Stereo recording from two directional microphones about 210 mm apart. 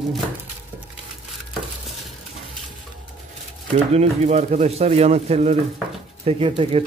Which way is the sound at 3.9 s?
30° right (ahead or behind).